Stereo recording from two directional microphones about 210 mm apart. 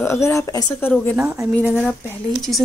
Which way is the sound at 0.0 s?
15° left (ahead or behind).